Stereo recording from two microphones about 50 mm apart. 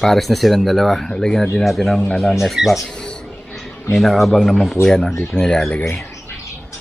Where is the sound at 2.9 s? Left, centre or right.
Centre.